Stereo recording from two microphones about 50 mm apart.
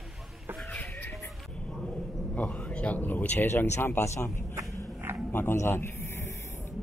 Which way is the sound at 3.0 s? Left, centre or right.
Left.